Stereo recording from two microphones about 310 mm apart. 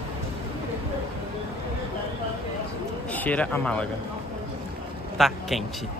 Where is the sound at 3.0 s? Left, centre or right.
Centre.